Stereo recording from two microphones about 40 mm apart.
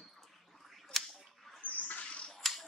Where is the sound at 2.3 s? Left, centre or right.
Centre.